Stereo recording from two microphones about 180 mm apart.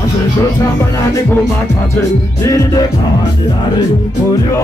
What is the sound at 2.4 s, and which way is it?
Music, 15° left (ahead or behind).